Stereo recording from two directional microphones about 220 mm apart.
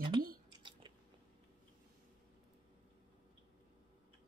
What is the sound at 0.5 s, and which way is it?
Chewing, 20° right (ahead or behind).